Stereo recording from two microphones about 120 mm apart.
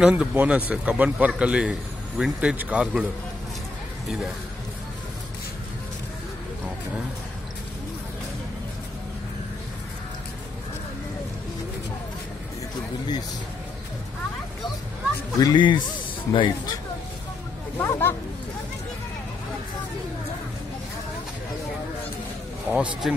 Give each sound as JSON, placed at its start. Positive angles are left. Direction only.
{"t": 0.0, "sound": "a man's voice", "side_deg": -10}
{"t": 15.3, "sound": "speech", "side_deg": 35}
{"t": 17.7, "sound": "speech", "side_deg": 20}
{"t": 22.7, "sound": "a man's voice", "side_deg": -5}